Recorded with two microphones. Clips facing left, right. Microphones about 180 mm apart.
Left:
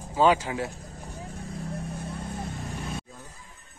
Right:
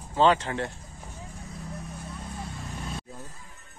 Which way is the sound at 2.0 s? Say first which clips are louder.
Left 4 dB; 60° left (ahead or behind).